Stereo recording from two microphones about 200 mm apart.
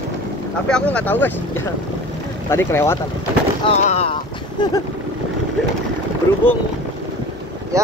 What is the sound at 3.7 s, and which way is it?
Speech, 30° left (ahead or behind).